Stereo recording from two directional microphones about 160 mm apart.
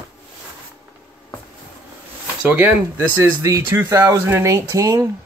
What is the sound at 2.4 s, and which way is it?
Speech, 10° right (ahead or behind).